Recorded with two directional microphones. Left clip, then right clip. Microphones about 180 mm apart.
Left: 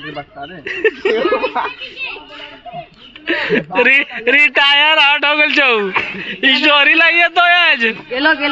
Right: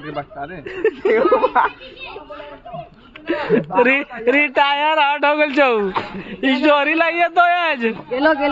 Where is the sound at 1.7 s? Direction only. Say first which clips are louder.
Left 8 dB; 65° right (ahead or behind).